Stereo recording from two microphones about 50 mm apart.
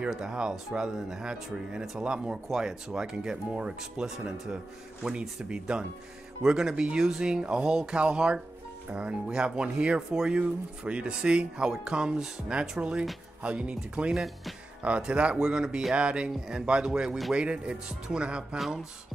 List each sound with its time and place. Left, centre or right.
0.1 s speech: centre
14.1 s speech: centre
14.8 s speech: right